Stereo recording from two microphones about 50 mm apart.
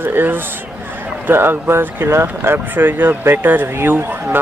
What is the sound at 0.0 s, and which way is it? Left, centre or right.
Speech, right.